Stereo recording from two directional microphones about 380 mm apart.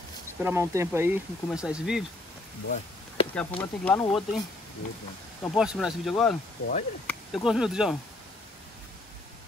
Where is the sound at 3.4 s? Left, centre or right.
Centre.